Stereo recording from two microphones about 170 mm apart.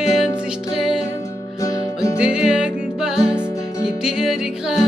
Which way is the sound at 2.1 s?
5° right (ahead or behind).